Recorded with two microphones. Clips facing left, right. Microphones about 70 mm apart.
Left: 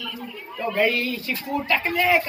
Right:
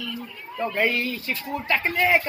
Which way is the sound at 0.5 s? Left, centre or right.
Centre.